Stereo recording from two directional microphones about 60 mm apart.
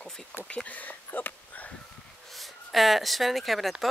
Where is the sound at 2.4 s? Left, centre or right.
Centre.